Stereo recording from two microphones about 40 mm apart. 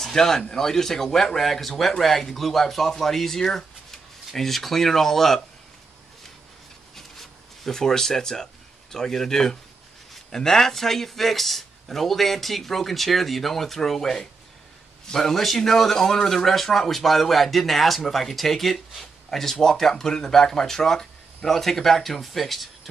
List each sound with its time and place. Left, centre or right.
0.0 s speech: centre
7.0 s a sound: centre
8.9 s speech: centre